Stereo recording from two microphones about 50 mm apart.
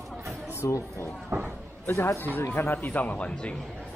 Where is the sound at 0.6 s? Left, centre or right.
Left.